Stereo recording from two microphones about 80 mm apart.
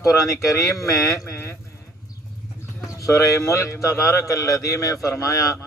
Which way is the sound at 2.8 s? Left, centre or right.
Left.